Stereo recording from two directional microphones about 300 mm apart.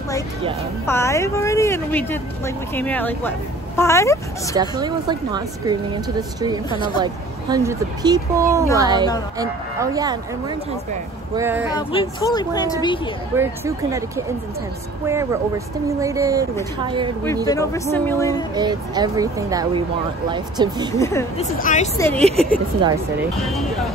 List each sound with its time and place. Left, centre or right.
0.8 s a woman's voice: centre
4.6 s speech: centre
6.7 s a woman's voice: centre
7.0 s speech: centre
11.3 s speech: centre
11.7 s a woman's voice: centre
13.4 s speech: centre
17.5 s a woman's voice: centre
18.5 s speech: centre
21.0 s a woman's voice: centre
21.4 s speech: left
21.9 s a woman's voice: centre
22.2 s speech: right
23.3 s speech: centre